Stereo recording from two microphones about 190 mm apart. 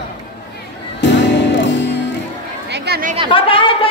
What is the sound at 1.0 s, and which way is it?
Music, 70° left (ahead or behind).